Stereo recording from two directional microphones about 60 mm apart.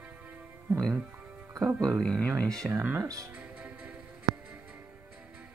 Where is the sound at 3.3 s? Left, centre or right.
Right.